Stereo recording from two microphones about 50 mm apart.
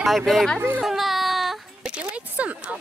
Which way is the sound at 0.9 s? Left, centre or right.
Centre.